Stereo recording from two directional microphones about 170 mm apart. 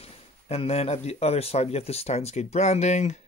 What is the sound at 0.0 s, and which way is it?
Speech, 35° left (ahead or behind).